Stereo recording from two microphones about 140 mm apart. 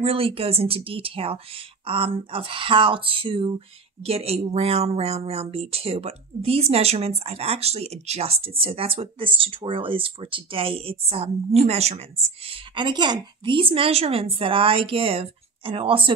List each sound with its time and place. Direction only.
0.0 s a woman's voice: 40° right (ahead or behind)
12.4 s a woman's voice: 35° right (ahead or behind)